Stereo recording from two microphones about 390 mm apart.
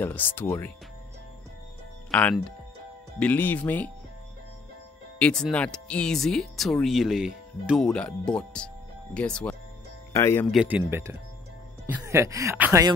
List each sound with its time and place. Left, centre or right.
0.0 s speech: centre
2.0 s speech: centre
5.2 s speech: centre